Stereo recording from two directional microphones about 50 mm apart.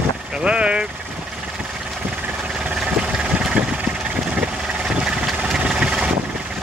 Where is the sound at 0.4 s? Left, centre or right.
Right.